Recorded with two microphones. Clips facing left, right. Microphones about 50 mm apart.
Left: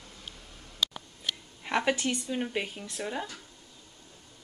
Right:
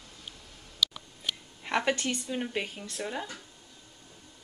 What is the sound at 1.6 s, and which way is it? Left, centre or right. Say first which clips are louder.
Speech: left 1 dB; centre.